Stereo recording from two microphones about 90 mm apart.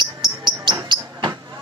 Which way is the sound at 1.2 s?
55° right (ahead or behind).